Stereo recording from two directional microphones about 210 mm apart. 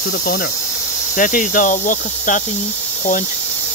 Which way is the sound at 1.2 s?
40° left (ahead or behind).